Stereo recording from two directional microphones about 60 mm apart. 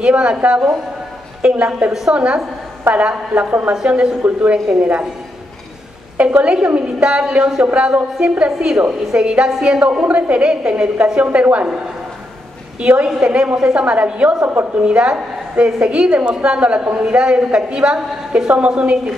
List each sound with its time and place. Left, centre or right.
0.0 s a woman's voice: centre
6.1 s a woman's voice: right
12.8 s a woman's voice: centre
14.4 s a woman's voice: right
14.8 s a woman's voice: centre